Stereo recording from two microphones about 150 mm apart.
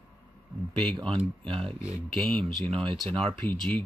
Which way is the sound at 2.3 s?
5° left (ahead or behind).